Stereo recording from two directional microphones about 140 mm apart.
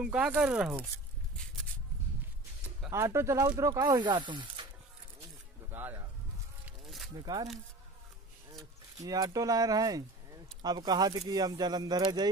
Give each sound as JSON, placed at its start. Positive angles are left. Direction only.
{"t": 0.0, "sound": "speech", "side_deg": -10}
{"t": 2.9, "sound": "speech", "side_deg": -20}
{"t": 5.7, "sound": "speech", "side_deg": -15}
{"t": 7.2, "sound": "speech", "side_deg": -30}
{"t": 9.0, "sound": "speech", "side_deg": -25}